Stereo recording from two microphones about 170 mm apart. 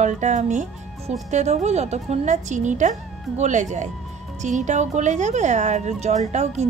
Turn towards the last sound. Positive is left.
turn(degrees=-40)  # may be behind; listen again after turning